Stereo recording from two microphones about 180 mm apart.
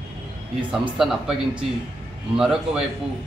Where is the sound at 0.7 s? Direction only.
5° right (ahead or behind).